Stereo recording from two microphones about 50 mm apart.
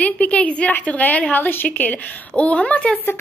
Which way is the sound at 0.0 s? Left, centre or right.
Left.